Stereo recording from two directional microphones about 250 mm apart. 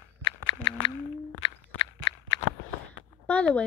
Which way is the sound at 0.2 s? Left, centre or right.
Centre.